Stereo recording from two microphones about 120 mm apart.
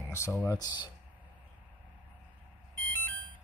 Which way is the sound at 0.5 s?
35° left (ahead or behind).